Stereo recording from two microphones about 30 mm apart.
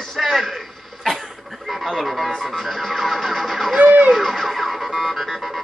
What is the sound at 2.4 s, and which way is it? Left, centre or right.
Speech, centre.